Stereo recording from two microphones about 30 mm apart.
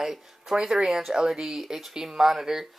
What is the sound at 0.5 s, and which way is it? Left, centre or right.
Speech, centre.